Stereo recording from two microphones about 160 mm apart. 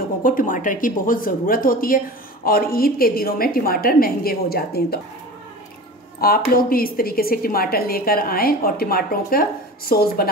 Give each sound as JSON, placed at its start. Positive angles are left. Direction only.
{"t": 0.2, "sound": "speech", "side_deg": 60}
{"t": 6.5, "sound": "a woman's voice", "side_deg": 65}